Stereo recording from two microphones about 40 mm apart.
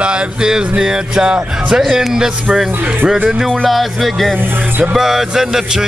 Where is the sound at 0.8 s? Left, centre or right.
Centre.